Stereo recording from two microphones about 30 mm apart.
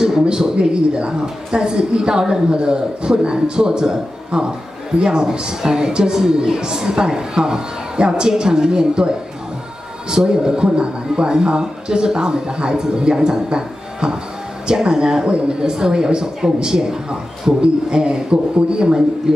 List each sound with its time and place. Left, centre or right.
0.6 s speech: right